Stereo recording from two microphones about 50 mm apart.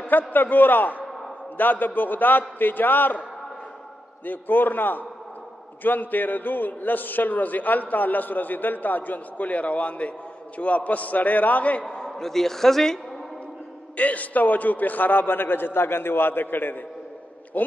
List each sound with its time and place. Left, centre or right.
0.3 s a man's voice: left
4.3 s a man's voice: left; by 12.1 s centre
12.1 s a man's voice: centre
13.9 s a man's voice: left